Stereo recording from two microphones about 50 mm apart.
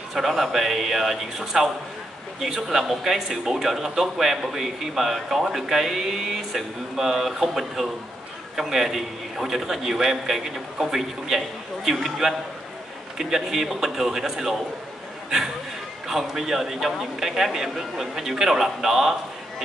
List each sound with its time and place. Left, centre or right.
0.1 s speech: centre